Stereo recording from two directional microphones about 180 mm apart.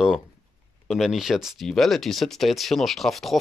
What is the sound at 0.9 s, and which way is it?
Speech, centre (ahead or behind).